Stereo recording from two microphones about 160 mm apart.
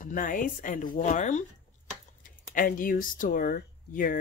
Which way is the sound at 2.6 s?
60° left (ahead or behind).